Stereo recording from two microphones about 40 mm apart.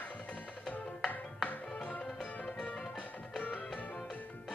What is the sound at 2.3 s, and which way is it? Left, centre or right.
Music, left.